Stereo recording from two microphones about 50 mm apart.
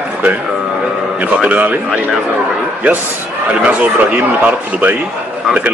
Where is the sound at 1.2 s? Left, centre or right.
Right.